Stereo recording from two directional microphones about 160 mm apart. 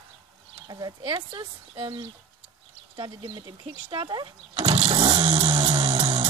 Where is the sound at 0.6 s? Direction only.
25° right (ahead or behind).